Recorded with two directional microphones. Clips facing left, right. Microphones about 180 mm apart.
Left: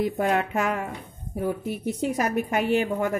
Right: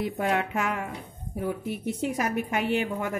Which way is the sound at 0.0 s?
45° left (ahead or behind).